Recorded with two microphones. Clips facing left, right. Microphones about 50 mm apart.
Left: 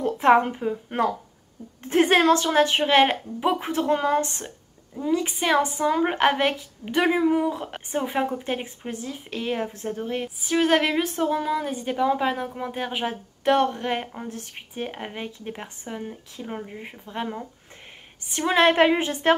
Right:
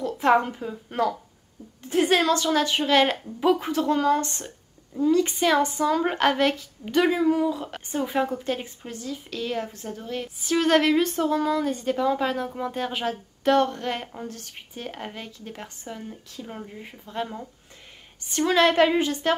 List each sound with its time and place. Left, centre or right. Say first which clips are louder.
0.0 s a woman's voice: left 3 dB; left
4.9 s a woman's voice: right 4 dB; centre
10.2 s a woman's voice: even; centre